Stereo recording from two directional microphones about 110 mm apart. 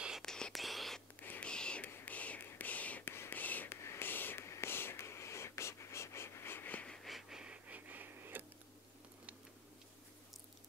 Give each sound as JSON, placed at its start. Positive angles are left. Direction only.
{"t": 0.2, "sound": "whispering", "side_deg": 5}
{"t": 1.2, "sound": "whispering", "side_deg": 15}